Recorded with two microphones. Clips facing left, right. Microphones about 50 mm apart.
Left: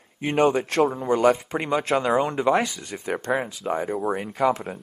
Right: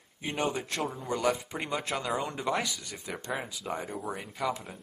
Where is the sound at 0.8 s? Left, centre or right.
Left.